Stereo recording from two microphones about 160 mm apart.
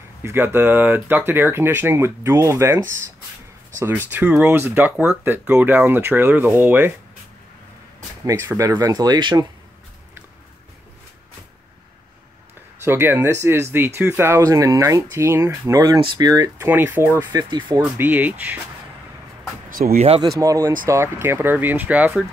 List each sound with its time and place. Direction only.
0.2 s speech: 15° right (ahead or behind)
8.3 s speech: 15° right (ahead or behind)
12.8 s speech: 15° right (ahead or behind)
17.3 s speech: 30° right (ahead or behind)
17.7 s speech: 15° right (ahead or behind)
19.7 s speech: 65° right (ahead or behind)
20.2 s speech: 20° right (ahead or behind)